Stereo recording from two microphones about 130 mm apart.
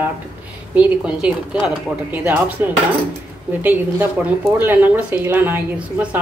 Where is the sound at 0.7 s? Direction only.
10° right (ahead or behind).